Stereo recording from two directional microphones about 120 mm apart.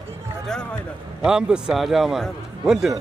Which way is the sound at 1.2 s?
5° right (ahead or behind).